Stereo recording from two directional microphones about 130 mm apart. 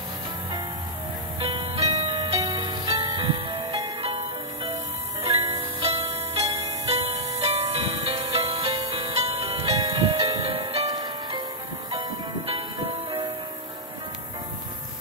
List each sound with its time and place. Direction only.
1.4 s music: 45° right (ahead or behind)
2.3 s music: 30° right (ahead or behind)
2.6 s music: 40° right (ahead or behind)
5.4 s music: 50° right (ahead or behind)
8.6 s music: 30° right (ahead or behind)
8.9 s music: 45° right (ahead or behind)
10.9 s music: 35° right (ahead or behind)
11.9 s music: 45° right (ahead or behind)